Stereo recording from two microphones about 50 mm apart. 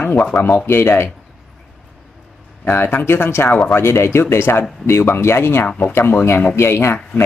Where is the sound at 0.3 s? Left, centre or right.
Left.